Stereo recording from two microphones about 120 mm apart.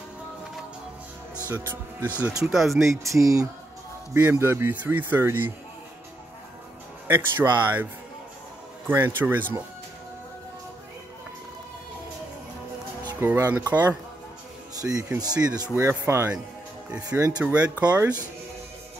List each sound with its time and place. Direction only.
1.5 s speech: 20° right (ahead or behind)
2.4 s speech: centre (ahead or behind)
2.8 s speech: 25° right (ahead or behind)
7.1 s speech: 15° right (ahead or behind)
13.1 s speech: 20° right (ahead or behind)
14.8 s speech: 30° right (ahead or behind)
15.7 s speech: 20° right (ahead or behind)
17.4 s speech: 10° right (ahead or behind)